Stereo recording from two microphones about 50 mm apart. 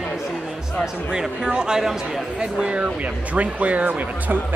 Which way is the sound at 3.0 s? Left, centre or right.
Right.